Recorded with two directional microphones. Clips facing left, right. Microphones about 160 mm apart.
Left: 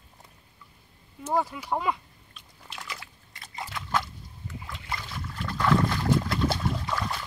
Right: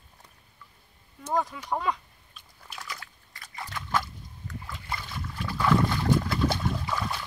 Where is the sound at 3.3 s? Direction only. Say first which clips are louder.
Left 2 dB; 20° left (ahead or behind).